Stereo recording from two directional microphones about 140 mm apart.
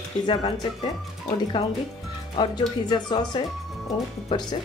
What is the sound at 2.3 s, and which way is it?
Speech, 35° left (ahead or behind).